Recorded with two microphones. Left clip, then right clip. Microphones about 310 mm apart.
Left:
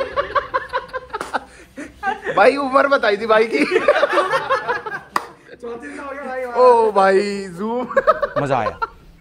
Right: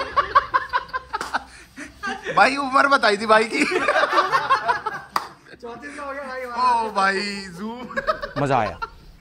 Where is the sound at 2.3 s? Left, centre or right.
Centre.